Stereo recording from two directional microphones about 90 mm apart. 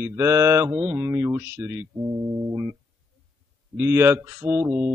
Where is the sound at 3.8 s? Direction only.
25° right (ahead or behind).